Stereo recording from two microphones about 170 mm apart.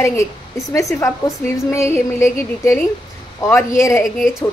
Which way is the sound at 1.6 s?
15° left (ahead or behind).